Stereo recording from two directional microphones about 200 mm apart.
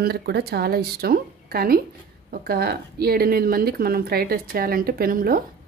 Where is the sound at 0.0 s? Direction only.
55° right (ahead or behind).